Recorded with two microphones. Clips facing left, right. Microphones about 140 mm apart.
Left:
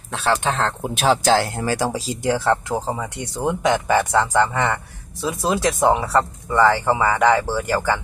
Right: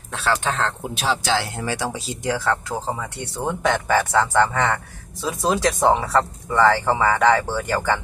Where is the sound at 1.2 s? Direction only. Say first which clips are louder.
Left 5 dB; 45° left (ahead or behind).